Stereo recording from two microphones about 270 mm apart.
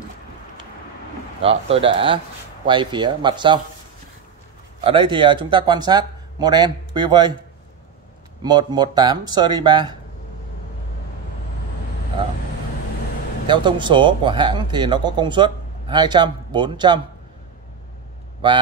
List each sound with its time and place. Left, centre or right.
1.4 s speech: right
4.8 s speech: centre
8.4 s speech: centre
13.5 s speech: centre